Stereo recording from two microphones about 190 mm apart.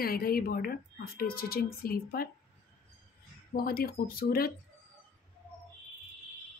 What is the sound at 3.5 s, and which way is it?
Speech, 50° left (ahead or behind).